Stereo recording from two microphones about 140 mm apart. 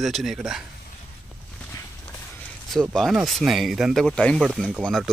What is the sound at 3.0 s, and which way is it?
Speech, centre (ahead or behind).